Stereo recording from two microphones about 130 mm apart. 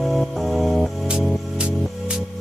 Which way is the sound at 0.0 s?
Centre (ahead or behind).